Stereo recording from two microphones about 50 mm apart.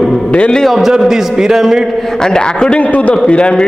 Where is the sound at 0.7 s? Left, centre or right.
Centre.